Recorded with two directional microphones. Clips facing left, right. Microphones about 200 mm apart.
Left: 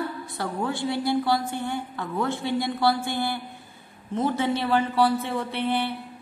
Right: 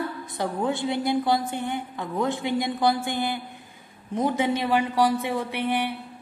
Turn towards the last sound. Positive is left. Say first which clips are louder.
# even
turn(degrees=-15)  # may be behind; listen again after turning